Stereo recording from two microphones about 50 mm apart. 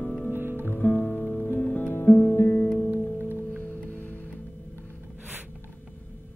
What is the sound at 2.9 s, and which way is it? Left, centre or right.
Music, right.